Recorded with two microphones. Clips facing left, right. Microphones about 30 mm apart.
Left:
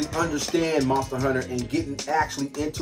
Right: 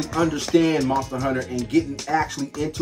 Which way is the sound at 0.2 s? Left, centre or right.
Right.